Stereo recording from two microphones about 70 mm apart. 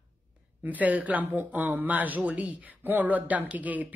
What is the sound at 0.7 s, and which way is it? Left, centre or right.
A woman's voice, right.